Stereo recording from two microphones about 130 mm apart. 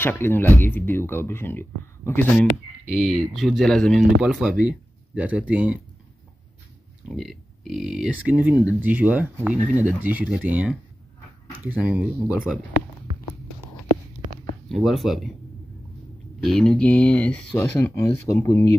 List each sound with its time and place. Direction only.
0.0 s speech: 15° left (ahead or behind)
3.1 s speech: centre (ahead or behind)
7.2 s speech: centre (ahead or behind)
14.7 s speech: centre (ahead or behind)
16.3 s speech: centre (ahead or behind)
17.8 s speech: 20° left (ahead or behind)